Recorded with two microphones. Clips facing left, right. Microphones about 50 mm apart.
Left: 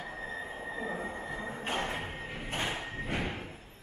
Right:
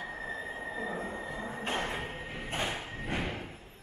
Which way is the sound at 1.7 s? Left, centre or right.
Centre.